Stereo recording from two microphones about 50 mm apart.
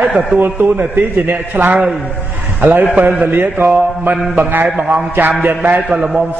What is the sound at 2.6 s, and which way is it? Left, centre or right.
Speech, right.